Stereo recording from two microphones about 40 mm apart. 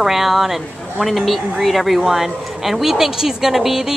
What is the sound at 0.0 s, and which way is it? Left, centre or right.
A woman's voice, centre.